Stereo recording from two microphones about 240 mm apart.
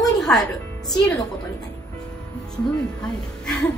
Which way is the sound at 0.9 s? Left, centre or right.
Centre.